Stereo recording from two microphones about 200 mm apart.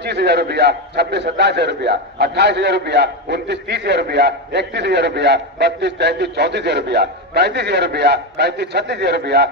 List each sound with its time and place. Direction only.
0.0 s a man's voice: 55° right (ahead or behind)